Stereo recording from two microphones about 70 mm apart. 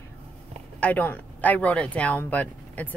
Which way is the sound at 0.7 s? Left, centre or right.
Left.